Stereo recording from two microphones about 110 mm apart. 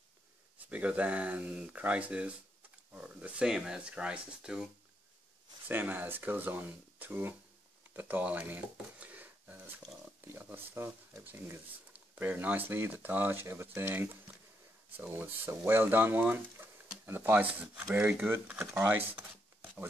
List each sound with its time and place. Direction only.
0.7 s speech: 15° right (ahead or behind)
5.7 s speech: 15° right (ahead or behind)
7.9 s a sound: 15° right (ahead or behind)
10.2 s speech: 20° right (ahead or behind)